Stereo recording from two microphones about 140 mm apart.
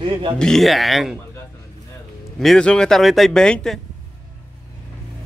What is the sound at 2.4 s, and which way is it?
Speech, 5° left (ahead or behind).